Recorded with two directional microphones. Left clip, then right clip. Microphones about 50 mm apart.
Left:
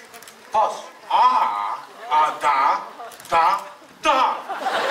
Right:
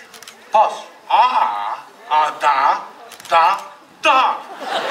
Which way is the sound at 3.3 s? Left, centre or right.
Right.